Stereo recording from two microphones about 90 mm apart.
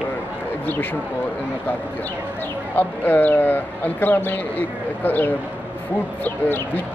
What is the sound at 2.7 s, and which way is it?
Speech, 20° left (ahead or behind).